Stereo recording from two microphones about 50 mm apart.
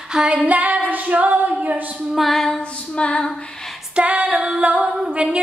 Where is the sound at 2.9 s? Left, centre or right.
Left.